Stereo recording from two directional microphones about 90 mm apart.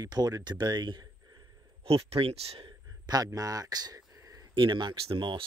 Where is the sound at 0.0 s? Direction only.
45° right (ahead or behind).